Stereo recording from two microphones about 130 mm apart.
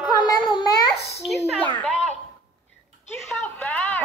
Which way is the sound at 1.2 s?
Centre (ahead or behind).